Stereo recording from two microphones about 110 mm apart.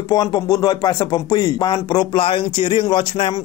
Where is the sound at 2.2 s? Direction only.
50° left (ahead or behind).